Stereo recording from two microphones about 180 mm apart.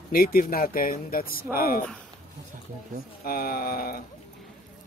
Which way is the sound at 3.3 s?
55° left (ahead or behind).